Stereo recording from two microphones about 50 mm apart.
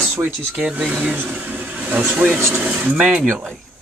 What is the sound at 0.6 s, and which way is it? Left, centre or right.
Speech, right.